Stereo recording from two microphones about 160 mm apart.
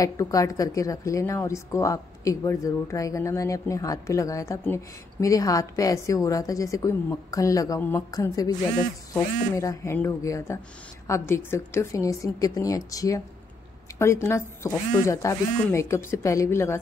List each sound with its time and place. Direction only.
0.0 s speech: 20° left (ahead or behind)